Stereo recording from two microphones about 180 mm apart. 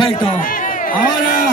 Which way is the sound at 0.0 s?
25° left (ahead or behind).